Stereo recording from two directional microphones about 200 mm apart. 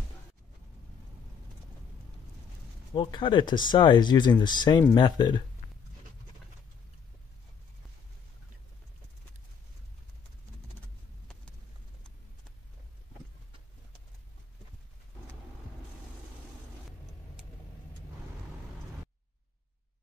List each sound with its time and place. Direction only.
2.9 s speech: 25° left (ahead or behind)